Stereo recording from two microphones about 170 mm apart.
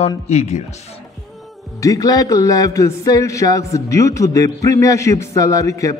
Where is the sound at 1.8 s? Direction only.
20° left (ahead or behind).